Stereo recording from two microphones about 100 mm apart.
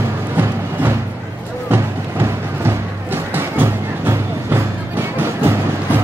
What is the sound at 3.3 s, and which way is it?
Music, 20° right (ahead or behind).